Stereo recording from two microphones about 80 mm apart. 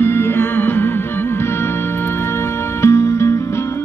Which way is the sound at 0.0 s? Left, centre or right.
Left.